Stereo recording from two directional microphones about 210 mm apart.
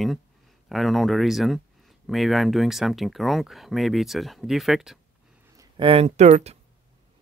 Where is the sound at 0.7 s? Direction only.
Centre (ahead or behind).